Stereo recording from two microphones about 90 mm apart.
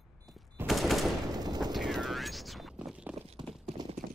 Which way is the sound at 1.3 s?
50° right (ahead or behind).